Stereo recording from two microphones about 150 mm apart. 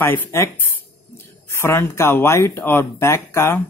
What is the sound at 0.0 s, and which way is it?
Speech, 20° left (ahead or behind).